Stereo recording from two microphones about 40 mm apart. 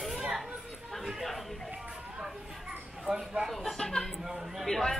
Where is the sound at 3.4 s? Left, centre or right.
Centre.